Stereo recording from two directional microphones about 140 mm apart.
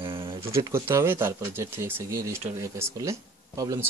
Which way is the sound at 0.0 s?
40° right (ahead or behind).